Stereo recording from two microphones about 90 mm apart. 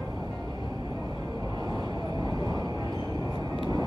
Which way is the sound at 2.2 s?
50° right (ahead or behind).